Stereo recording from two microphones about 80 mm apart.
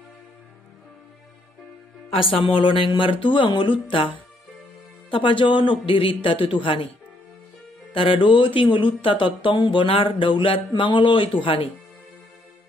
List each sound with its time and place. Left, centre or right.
2.1 s speech: left
7.9 s speech: left